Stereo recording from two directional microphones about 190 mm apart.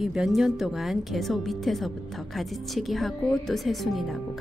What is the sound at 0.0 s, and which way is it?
A woman's voice, centre (ahead or behind).